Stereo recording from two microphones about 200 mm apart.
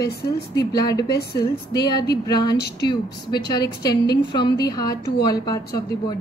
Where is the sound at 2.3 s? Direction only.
20° left (ahead or behind).